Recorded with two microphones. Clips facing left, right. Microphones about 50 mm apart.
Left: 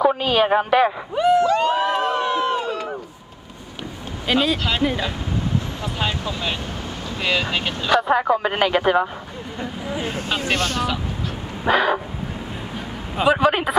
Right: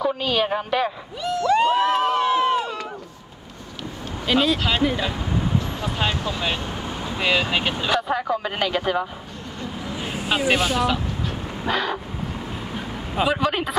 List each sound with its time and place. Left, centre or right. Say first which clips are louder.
0.0 s a sound: left 5 dB; centre
0.5 s a woman's voice: left 6 dB; left
1.1 s a sound: left 10 dB; left
1.7 s crowd: right 1 dB; centre
4.3 s speech: even; centre
5.8 s speech: right 1 dB; centre
8.0 s speech: left 5 dB; centre
10.1 s speech: right 5 dB; centre
11.6 s speech: left 6 dB; centre
13.1 s a man's voice: left 4 dB; centre
13.4 s speech: left 5 dB; centre